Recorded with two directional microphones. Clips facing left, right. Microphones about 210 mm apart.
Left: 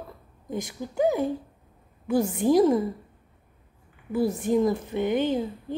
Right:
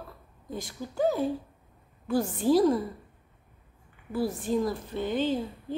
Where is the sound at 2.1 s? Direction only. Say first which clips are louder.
Left 2 dB; 20° left (ahead or behind).